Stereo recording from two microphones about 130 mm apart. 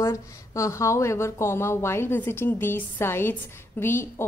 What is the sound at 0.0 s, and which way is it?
A woman's voice, 25° left (ahead or behind).